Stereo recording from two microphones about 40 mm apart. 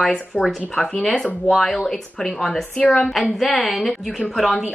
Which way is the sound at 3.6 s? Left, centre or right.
Centre.